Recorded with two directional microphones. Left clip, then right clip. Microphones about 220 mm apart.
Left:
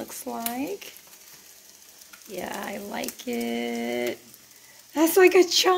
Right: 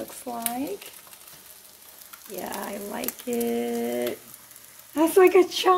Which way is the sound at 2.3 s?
20° left (ahead or behind).